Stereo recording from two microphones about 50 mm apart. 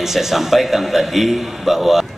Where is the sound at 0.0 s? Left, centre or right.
Centre.